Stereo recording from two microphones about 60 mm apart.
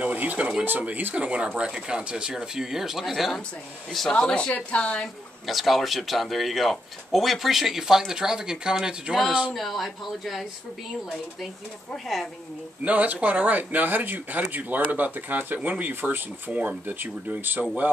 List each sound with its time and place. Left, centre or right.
0.0 s speech: right; by 3.4 s centre
4.1 s a woman's voice: centre
5.5 s speech: centre
9.5 s speech: centre
12.8 s speech: right